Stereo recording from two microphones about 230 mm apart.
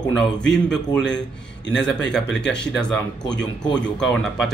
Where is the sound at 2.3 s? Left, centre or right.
Left.